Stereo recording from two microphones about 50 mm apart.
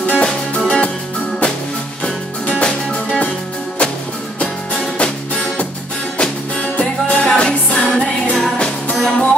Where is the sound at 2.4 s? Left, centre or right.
Left.